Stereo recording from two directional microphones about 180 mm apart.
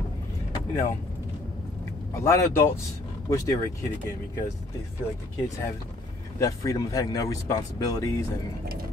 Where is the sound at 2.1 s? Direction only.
15° left (ahead or behind).